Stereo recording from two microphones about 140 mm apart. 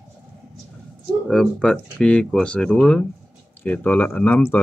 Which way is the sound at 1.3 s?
5° left (ahead or behind).